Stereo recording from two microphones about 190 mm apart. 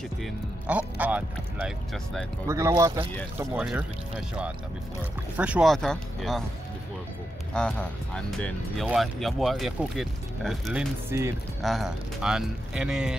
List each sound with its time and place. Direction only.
0.2 s music: 5° right (ahead or behind)
2.4 s speech: 15° right (ahead or behind)
3.3 s speech: 5° right (ahead or behind)
5.4 s speech: 5° right (ahead or behind)
7.5 s speech: 5° left (ahead or behind); by 11.3 s 15° right (ahead or behind)
11.6 s speech: centre (ahead or behind)